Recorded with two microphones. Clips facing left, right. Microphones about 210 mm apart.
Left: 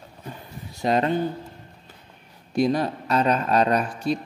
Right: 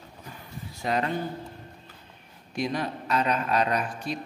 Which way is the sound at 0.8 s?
25° left (ahead or behind).